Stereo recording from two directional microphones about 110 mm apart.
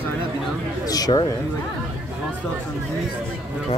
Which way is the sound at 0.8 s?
35° left (ahead or behind).